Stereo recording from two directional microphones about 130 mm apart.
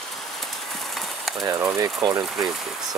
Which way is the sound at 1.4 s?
25° right (ahead or behind).